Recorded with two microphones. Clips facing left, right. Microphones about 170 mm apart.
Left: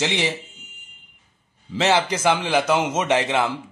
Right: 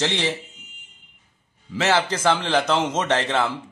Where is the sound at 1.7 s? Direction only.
20° left (ahead or behind).